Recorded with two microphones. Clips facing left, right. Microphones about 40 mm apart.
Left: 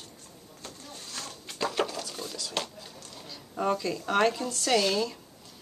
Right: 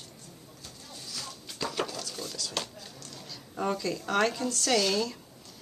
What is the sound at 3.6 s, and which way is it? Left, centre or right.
A woman's voice, centre.